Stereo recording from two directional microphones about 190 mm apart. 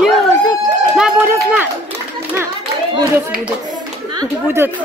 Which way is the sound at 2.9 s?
15° right (ahead or behind).